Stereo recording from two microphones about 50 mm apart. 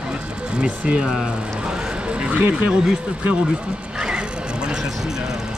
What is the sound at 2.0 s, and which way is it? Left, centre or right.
Vehicle, right.